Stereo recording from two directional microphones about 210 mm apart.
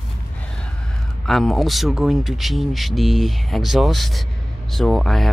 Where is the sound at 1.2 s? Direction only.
Centre (ahead or behind).